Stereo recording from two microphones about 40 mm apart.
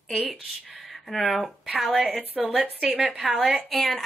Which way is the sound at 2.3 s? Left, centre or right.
Right.